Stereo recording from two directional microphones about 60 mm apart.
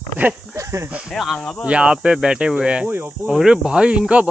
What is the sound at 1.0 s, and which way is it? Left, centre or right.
Speech, centre.